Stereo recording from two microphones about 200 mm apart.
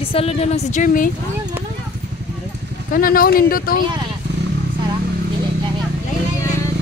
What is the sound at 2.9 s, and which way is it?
Speech, 45° left (ahead or behind).